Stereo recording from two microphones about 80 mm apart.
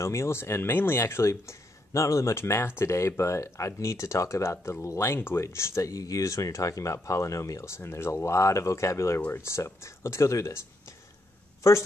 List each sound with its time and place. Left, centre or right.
0.0 s speech: left
11.6 s speech: left